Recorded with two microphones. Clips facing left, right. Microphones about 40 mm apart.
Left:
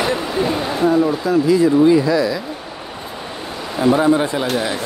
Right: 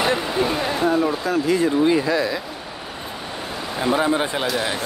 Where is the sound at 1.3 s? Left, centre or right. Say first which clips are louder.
Left 7 dB; right.